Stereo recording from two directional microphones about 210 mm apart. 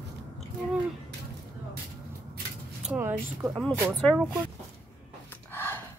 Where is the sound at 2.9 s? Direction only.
5° right (ahead or behind).